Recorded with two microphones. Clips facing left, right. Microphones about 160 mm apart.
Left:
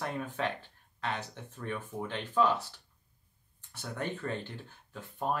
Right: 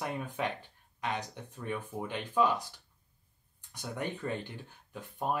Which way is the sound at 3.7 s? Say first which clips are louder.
Even; 15° right (ahead or behind).